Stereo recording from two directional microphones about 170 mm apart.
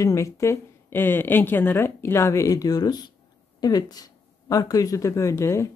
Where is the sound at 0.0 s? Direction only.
15° left (ahead or behind).